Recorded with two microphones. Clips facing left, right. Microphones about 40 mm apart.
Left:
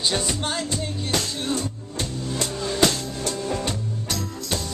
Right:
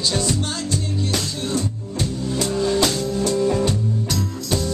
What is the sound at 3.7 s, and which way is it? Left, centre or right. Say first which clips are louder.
Music: right 6 dB; centre.